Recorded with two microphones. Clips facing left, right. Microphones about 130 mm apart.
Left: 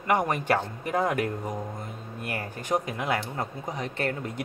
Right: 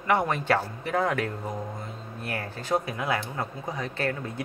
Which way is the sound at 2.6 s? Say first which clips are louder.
Even; 20° left (ahead or behind).